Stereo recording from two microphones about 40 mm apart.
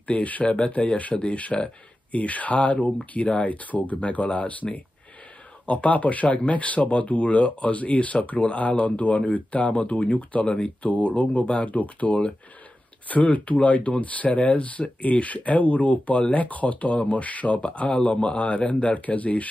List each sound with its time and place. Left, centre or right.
0.0 s speech: left